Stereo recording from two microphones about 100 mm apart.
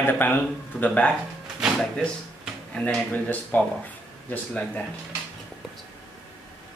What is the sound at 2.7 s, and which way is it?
Speech, 10° left (ahead or behind).